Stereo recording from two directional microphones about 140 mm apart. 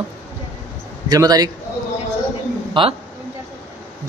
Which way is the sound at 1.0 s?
25° right (ahead or behind).